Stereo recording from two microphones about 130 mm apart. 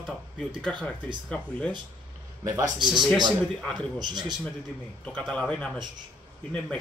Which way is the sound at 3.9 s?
35° right (ahead or behind).